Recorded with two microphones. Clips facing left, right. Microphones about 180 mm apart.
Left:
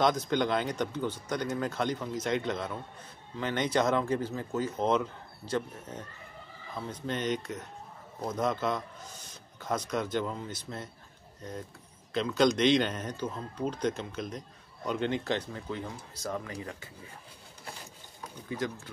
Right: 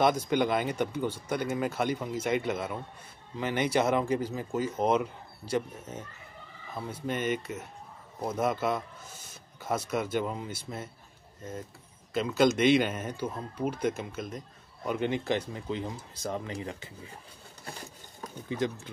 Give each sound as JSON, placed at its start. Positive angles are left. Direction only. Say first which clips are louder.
{"t": 0.0, "sound": "speech", "louder": "right 2 dB", "side_deg": -10}
{"t": 12.1, "sound": "speech", "louder": "right 1 dB", "side_deg": -5}